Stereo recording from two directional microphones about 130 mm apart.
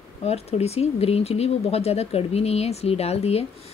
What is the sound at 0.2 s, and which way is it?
Speech, 55° left (ahead or behind).